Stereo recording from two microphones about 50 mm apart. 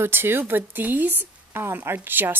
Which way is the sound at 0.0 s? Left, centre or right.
Right.